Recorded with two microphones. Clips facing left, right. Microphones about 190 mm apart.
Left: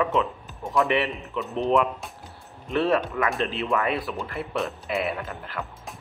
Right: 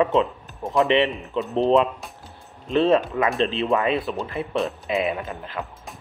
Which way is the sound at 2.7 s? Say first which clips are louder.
Right 4 dB; 20° right (ahead or behind).